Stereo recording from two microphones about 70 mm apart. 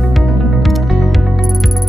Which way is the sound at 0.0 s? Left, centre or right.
Centre.